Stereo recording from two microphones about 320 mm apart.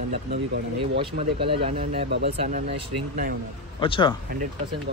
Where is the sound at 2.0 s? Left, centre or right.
Right.